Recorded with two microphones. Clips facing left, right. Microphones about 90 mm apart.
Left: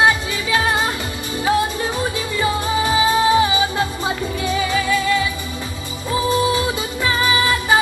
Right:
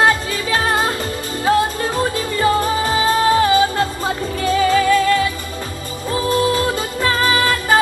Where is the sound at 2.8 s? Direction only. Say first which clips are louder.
Even; 15° left (ahead or behind).